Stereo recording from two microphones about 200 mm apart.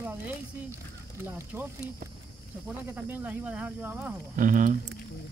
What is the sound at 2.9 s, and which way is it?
Speech, 10° right (ahead or behind).